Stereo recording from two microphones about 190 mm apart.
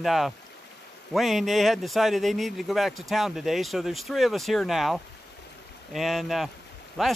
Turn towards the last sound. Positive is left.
turn(degrees=0)  # may be behind; listen again after turning